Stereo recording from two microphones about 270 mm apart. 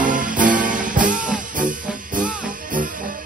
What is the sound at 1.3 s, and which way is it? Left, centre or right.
Music, right.